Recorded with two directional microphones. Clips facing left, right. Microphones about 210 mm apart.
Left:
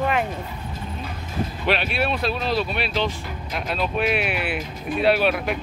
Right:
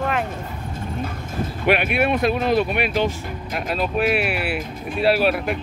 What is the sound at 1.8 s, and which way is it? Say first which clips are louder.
Speech: right 4 dB; 55° right (ahead or behind).